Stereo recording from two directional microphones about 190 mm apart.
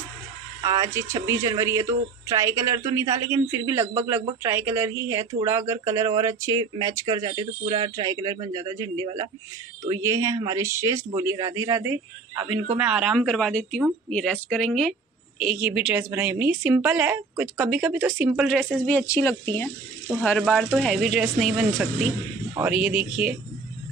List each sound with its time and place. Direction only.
0.6 s a woman's voice: 15° right (ahead or behind)
18.9 s a woman's voice: 10° left (ahead or behind); by 23.3 s 5° right (ahead or behind)